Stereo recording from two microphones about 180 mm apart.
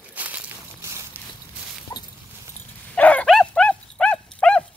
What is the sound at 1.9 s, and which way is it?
Dog, 20° left (ahead or behind).